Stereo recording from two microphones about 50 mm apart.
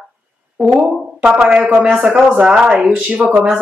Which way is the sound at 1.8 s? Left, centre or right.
Right.